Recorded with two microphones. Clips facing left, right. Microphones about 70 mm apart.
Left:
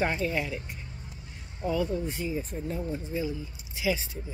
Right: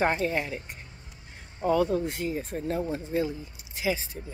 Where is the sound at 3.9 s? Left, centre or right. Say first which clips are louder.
Even; right.